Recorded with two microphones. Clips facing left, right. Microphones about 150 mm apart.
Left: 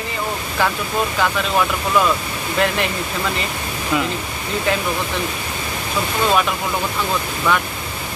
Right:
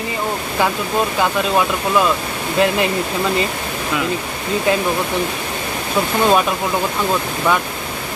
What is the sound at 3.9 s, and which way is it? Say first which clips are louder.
Speech: left 2 dB; centre (ahead or behind).